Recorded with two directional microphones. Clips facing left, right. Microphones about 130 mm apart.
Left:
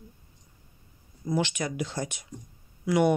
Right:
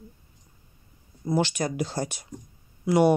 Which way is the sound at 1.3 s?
35° right (ahead or behind).